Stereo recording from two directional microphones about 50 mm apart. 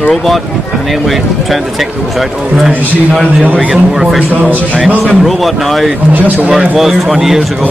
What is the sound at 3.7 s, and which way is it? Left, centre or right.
Speech, centre.